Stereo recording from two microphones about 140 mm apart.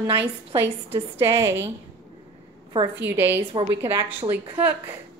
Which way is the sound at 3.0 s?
15° right (ahead or behind).